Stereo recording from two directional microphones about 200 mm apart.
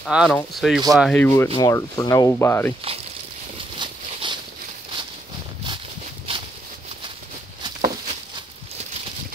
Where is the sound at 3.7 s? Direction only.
25° right (ahead or behind).